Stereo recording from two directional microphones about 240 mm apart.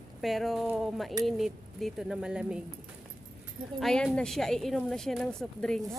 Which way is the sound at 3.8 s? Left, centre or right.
Centre.